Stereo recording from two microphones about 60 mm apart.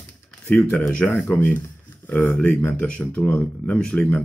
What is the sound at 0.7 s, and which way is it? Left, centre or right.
Speech, centre.